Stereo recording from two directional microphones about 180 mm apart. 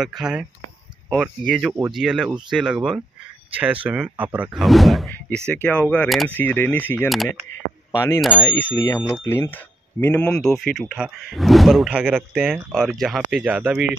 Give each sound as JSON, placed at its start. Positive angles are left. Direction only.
{"t": 0.0, "sound": "speech", "side_deg": -5}
{"t": 1.7, "sound": "speech", "side_deg": -15}
{"t": 2.0, "sound": "speech", "side_deg": -5}